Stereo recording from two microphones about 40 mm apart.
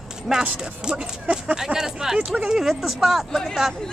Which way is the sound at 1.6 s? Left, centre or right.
Centre.